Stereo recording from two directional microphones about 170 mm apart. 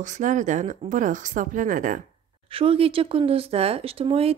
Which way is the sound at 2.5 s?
35° right (ahead or behind).